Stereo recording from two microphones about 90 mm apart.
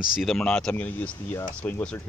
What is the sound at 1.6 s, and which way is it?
Speech, 15° left (ahead or behind).